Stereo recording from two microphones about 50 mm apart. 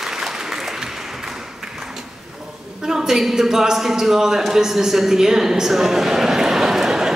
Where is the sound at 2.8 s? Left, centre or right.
Centre.